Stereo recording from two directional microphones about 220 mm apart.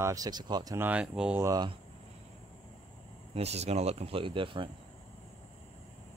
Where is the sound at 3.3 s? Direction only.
30° right (ahead or behind).